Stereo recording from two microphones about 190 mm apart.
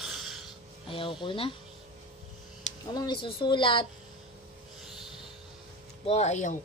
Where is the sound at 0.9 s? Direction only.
25° left (ahead or behind).